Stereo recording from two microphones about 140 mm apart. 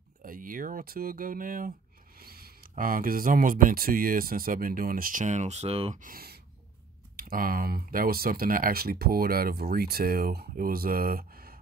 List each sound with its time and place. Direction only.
0.2 s a sound: 80° right
2.8 s speech: 90° right; by 5.9 s 45° right (ahead or behind)
5.9 s speech: 85° right